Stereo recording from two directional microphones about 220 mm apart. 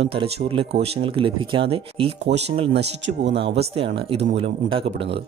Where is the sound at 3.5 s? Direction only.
25° right (ahead or behind).